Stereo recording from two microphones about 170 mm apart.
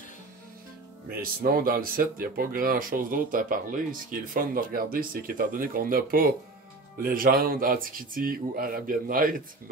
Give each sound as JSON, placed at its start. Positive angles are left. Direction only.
{"t": 1.2, "sound": "speech", "side_deg": -60}